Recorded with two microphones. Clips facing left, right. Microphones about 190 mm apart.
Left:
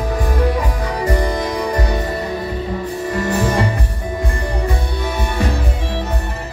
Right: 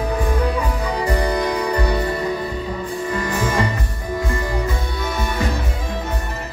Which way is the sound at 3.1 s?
35° left (ahead or behind).